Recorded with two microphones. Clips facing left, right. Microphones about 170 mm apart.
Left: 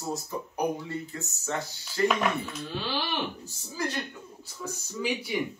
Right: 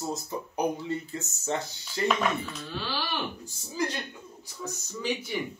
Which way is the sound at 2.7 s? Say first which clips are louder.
Left 2 dB; 15° left (ahead or behind).